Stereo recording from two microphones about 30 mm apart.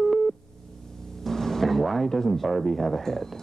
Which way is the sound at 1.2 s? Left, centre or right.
Centre.